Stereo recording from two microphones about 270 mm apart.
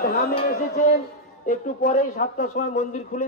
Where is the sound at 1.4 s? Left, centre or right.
Left.